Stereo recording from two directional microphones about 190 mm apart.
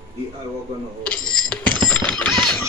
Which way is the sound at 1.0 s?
5° left (ahead or behind).